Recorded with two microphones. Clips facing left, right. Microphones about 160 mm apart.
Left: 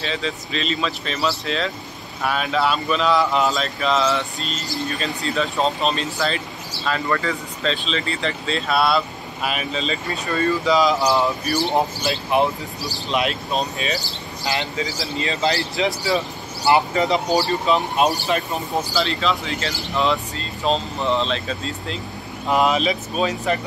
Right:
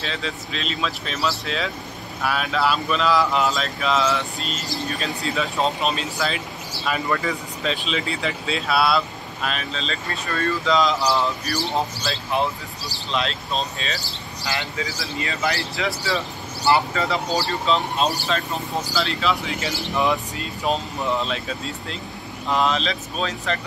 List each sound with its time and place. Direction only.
0.0 s speech: centre (ahead or behind); by 18.4 s 15° left (ahead or behind)
18.9 s speech: centre (ahead or behind)
20.0 s speech: 15° right (ahead or behind)
22.5 s speech: 10° left (ahead or behind)